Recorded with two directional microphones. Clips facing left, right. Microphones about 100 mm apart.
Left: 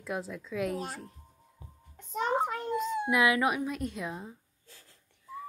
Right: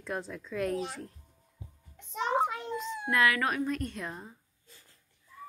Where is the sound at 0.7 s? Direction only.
45° left (ahead or behind).